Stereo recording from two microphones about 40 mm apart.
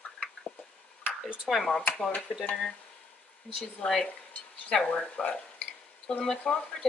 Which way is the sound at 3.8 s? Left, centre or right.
Centre.